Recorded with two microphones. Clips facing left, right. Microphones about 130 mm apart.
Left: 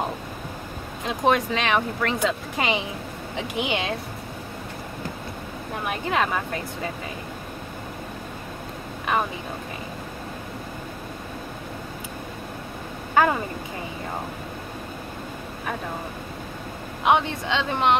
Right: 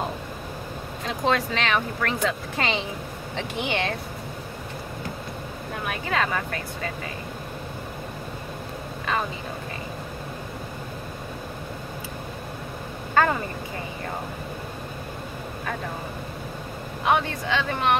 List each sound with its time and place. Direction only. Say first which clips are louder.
1.0 s a woman's voice: left 3 dB; 15° left (ahead or behind)
5.9 s speech: left 2 dB; 20° left (ahead or behind)
13.1 s speech: left 1 dB; 10° left (ahead or behind)
17.0 s speech: left 2 dB; 20° left (ahead or behind)